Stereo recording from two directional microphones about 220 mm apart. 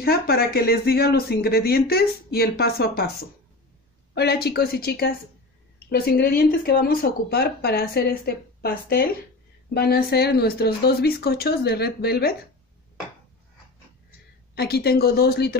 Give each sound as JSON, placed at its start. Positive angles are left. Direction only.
{"t": 0.0, "sound": "speech", "side_deg": 45}
{"t": 4.1, "sound": "speech", "side_deg": 45}
{"t": 14.5, "sound": "speech", "side_deg": 50}